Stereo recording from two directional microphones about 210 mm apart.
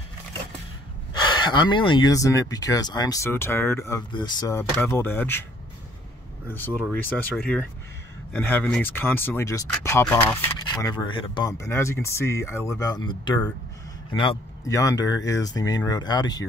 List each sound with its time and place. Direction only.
1.2 s speech: 20° left (ahead or behind)
6.5 s speech: 10° left (ahead or behind)